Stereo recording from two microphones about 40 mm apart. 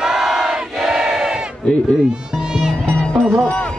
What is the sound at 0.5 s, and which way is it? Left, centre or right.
Crowd, centre.